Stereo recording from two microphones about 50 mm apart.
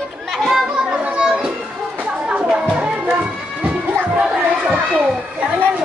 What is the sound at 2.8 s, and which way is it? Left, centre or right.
Music, right.